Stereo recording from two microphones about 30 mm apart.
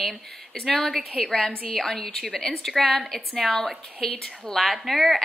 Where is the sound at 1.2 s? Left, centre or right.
Centre.